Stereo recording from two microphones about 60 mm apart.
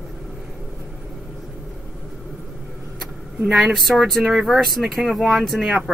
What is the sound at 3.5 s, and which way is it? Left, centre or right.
Speech, centre.